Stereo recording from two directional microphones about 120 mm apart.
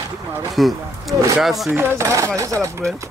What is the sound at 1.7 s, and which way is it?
Speech, 20° right (ahead or behind).